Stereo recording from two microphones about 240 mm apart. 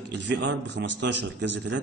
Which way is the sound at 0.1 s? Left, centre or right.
Right.